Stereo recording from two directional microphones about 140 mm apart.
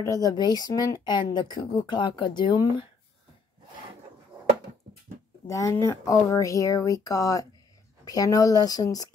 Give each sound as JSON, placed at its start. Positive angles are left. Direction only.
{"t": 0.0, "sound": "speech", "side_deg": 25}
{"t": 5.5, "sound": "speech", "side_deg": 20}